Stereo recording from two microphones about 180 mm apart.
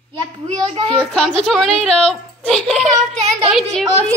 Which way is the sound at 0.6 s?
35° right (ahead or behind).